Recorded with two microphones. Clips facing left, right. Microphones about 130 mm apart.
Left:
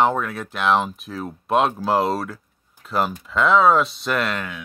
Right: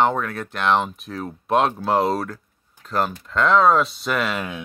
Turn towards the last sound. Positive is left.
turn(degrees=0)  # may be behind; listen again after turning